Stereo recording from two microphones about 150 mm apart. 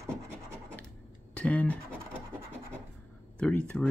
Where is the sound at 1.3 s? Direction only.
10° left (ahead or behind).